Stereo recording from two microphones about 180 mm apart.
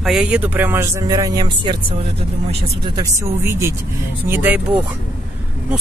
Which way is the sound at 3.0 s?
15° right (ahead or behind).